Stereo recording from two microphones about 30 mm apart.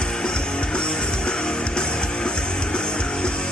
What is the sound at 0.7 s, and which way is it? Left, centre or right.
Music, left.